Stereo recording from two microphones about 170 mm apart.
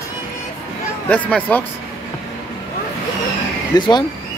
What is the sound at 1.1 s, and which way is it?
Speech, 10° left (ahead or behind).